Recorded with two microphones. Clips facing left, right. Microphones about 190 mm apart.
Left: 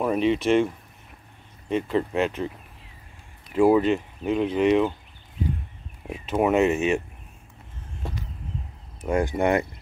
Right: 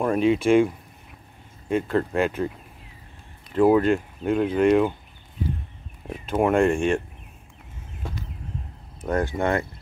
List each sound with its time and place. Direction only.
0.0 s speech: centre (ahead or behind)
1.7 s speech: centre (ahead or behind)
3.5 s speech: 5° left (ahead or behind)
6.0 s speech: 10° left (ahead or behind)
8.0 s a sound: centre (ahead or behind)
9.0 s speech: 10° left (ahead or behind)